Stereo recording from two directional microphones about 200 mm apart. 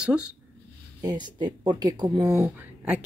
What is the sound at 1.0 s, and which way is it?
Speech, 20° right (ahead or behind).